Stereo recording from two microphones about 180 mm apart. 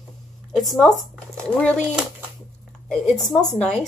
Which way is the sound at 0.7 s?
Centre (ahead or behind).